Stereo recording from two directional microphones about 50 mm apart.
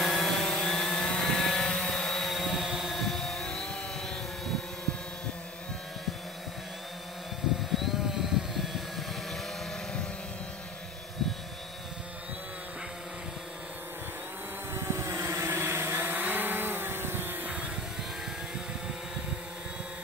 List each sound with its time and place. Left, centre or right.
0.0 s vehicle: centre
0.5 s vehicle: centre
2.9 s music: centre
7.7 s vehicle: centre
14.7 s vehicle: right